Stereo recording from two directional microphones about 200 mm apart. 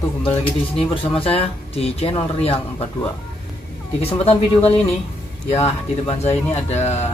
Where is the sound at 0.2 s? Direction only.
25° left (ahead or behind).